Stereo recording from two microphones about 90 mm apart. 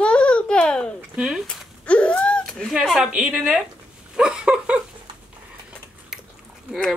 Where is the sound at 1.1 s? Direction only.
10° right (ahead or behind).